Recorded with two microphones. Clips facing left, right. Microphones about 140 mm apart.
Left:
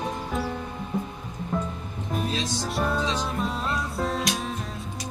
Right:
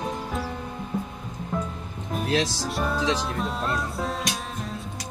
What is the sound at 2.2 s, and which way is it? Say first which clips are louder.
Music: right 8 dB; 90° right.